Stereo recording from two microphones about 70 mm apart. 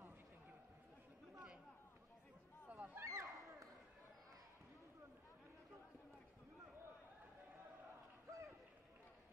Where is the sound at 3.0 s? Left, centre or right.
Right.